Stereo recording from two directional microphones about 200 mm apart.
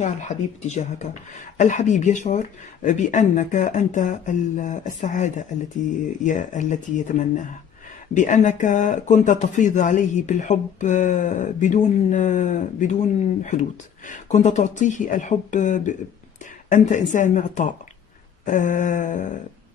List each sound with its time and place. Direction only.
0.0 s speech: 35° left (ahead or behind)